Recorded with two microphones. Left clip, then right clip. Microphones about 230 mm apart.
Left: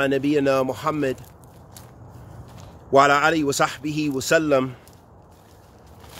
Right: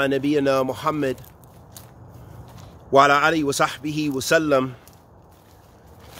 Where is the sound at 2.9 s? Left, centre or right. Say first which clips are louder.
Right 1 dB; centre.